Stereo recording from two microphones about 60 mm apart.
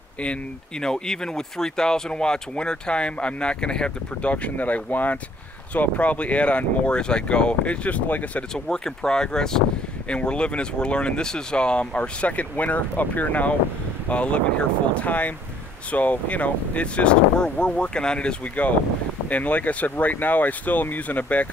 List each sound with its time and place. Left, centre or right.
0.2 s speech: centre
8.5 s speech: centre